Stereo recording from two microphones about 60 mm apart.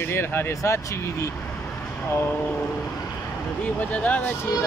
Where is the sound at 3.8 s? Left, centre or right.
Left.